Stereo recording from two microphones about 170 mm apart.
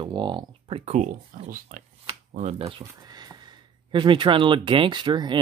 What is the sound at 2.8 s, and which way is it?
Speech, 25° right (ahead or behind).